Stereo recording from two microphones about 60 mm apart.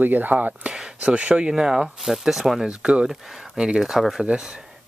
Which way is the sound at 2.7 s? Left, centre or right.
Centre.